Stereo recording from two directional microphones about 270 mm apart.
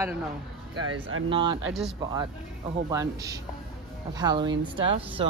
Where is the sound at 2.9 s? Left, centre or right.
Centre.